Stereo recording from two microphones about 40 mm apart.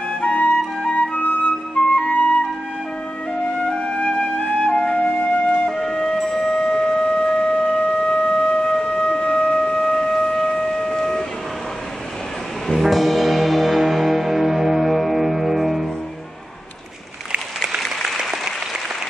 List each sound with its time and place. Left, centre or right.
0.2 s music: left
1.4 s flute: left
3.5 s flute: left
5.7 s music: centre
12.8 s music: centre
17.6 s applause: centre